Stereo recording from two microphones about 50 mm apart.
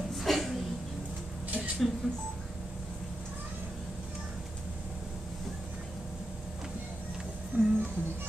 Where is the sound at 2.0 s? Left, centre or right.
Centre.